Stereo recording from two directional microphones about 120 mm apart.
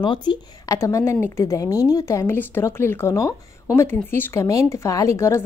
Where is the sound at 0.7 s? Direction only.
25° left (ahead or behind).